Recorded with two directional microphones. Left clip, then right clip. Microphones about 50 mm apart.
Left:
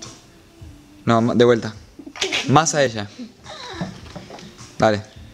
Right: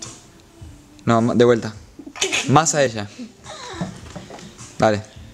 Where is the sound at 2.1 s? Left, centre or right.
Left.